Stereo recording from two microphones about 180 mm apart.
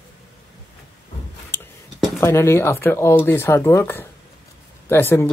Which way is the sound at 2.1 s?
15° left (ahead or behind).